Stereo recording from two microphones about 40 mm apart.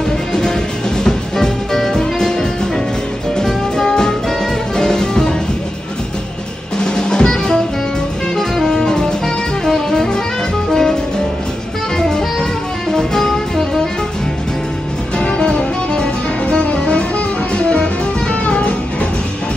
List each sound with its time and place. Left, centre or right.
1.0 s music: centre
3.3 s music: centre
6.8 s music: centre
12.9 s music: centre
15.1 s music: centre